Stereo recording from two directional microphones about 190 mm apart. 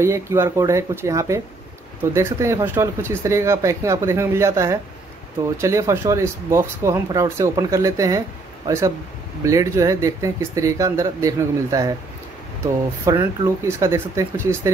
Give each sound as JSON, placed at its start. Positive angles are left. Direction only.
{"t": 0.0, "sound": "speech", "side_deg": -15}
{"t": 13.0, "sound": "speech", "side_deg": -20}